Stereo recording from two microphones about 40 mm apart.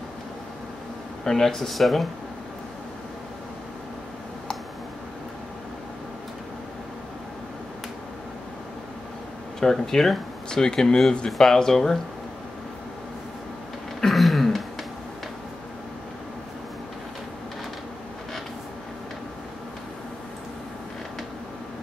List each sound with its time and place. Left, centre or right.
1.2 s speech: centre
9.6 s speech: centre
14.0 s a sound: centre